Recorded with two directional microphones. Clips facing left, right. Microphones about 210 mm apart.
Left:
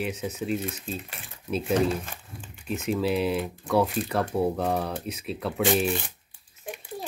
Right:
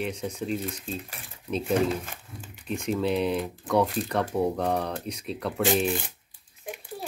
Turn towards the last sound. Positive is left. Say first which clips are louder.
# even
turn(degrees=0)  # may be behind; listen again after turning